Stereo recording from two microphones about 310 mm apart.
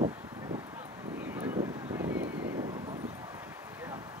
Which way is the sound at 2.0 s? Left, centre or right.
Right.